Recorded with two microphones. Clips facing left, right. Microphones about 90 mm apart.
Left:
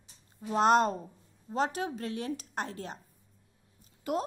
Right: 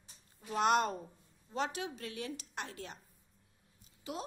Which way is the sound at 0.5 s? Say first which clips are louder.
Left 6 dB; 35° left (ahead or behind).